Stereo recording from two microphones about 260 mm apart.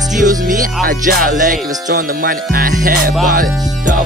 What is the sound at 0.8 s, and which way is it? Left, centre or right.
Music, right.